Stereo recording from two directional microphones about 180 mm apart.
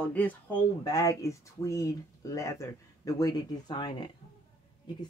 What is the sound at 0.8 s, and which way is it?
Speech, 20° left (ahead or behind).